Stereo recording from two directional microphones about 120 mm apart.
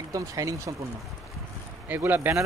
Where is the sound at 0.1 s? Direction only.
30° right (ahead or behind).